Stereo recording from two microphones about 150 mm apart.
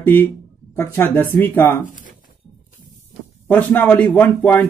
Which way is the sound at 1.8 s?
60° left (ahead or behind).